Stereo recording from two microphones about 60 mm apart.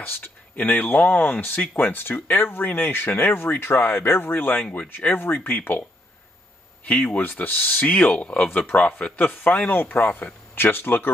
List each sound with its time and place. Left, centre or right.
0.0 s speech: left
7.9 s speech: centre; by 11.1 s left